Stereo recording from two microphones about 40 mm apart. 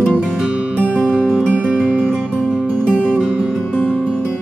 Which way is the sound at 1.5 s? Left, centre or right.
Right.